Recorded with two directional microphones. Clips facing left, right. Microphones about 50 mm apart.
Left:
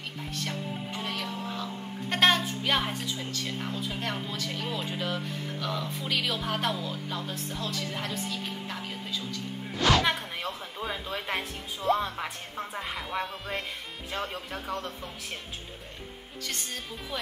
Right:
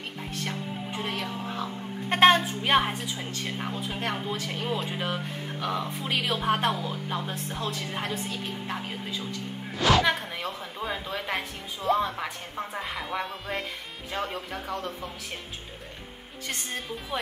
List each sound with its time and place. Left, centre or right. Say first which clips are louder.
0.5 s music: right 1 dB; right
1.5 s a woman's voice: right 2 dB; right
9.8 s a woman's voice: right 2 dB; centre
16.4 s speech: right 3 dB; right